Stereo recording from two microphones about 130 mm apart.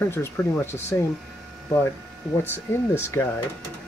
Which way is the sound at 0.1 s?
20° left (ahead or behind).